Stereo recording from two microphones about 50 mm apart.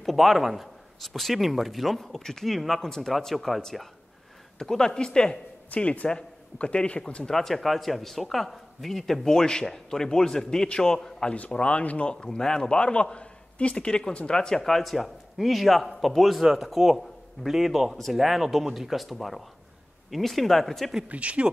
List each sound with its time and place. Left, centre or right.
0.0 s a man's voice: centre
4.6 s a man's voice: centre
5.7 s speech: left
7.2 s a man's voice: centre
11.3 s speech: left
12.1 s a man's voice: centre
21.1 s speech: right